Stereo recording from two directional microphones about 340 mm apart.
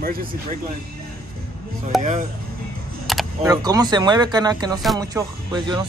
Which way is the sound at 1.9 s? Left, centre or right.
Centre.